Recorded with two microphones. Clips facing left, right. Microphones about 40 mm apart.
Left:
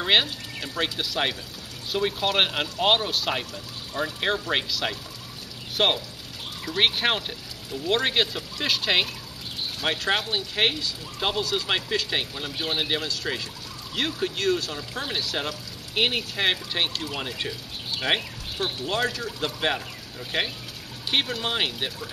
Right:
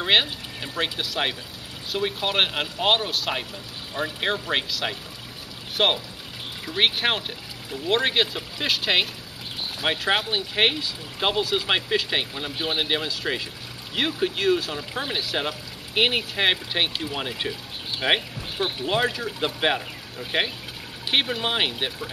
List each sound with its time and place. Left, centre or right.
0.0 s speech: centre